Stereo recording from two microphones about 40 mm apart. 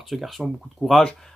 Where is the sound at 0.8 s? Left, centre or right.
Left.